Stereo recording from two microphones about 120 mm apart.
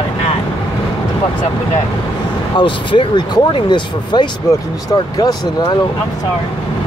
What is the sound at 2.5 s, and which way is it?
Speech, 45° left (ahead or behind).